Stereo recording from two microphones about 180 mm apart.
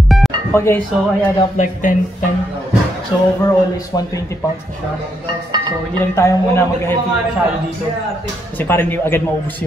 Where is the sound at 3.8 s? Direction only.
20° left (ahead or behind).